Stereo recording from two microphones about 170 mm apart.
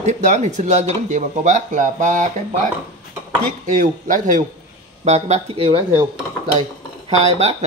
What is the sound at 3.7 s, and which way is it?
Speech, 50° right (ahead or behind).